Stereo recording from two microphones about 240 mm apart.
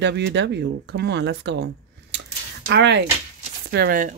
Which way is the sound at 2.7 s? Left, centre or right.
Right.